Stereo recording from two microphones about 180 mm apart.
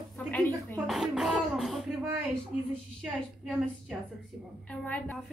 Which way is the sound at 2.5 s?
35° left (ahead or behind).